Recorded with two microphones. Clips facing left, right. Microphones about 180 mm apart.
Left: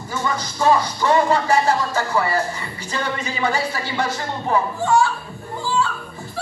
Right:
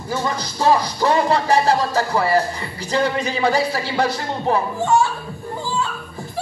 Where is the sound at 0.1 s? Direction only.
35° right (ahead or behind).